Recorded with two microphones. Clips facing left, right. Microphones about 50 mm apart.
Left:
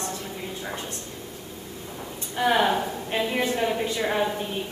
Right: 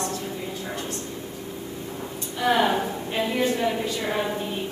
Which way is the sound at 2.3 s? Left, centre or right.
Centre.